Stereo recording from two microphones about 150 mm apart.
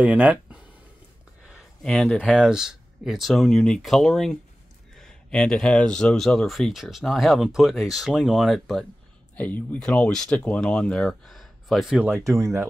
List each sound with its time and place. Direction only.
0.0 s speech: 10° right (ahead or behind)
1.5 s speech: 5° left (ahead or behind)
12.1 s speech: 20° right (ahead or behind)